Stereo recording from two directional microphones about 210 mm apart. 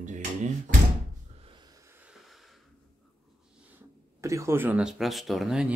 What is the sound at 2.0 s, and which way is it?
Snort, centre (ahead or behind).